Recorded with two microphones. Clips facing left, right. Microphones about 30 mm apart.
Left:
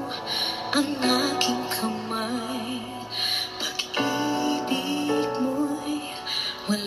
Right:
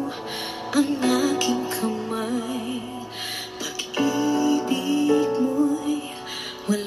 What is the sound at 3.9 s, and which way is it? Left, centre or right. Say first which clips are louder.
Music: right 4 dB; left.